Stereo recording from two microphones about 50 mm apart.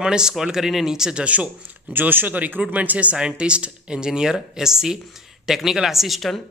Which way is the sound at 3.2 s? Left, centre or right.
Centre.